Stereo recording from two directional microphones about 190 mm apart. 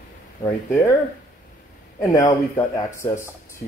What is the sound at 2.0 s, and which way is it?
Speech, 20° left (ahead or behind).